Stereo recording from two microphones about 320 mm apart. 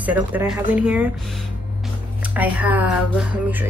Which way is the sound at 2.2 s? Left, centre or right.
Centre.